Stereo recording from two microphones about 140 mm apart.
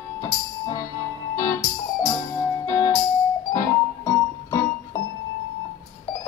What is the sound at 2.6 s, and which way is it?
Music, 25° left (ahead or behind).